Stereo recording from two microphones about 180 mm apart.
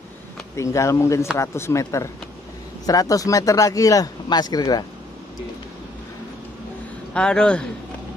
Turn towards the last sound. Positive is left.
turn(degrees=5)  # may be behind; listen again after turning